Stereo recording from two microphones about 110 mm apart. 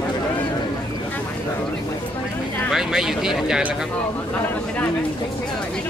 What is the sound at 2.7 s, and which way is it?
Speech, 5° right (ahead or behind).